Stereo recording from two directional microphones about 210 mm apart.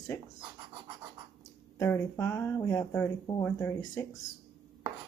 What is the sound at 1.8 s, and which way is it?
Speech, 15° left (ahead or behind).